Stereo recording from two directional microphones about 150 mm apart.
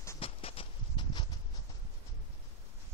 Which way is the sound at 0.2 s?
40° left (ahead or behind).